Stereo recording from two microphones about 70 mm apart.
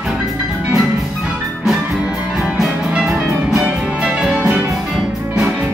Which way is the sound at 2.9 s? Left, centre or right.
Centre.